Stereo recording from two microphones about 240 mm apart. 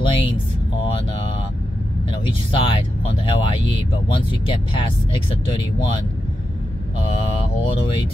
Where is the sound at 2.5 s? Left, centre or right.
Left.